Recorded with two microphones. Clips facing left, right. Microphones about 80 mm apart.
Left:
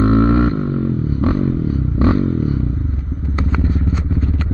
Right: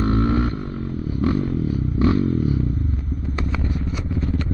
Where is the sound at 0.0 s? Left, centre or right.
Left.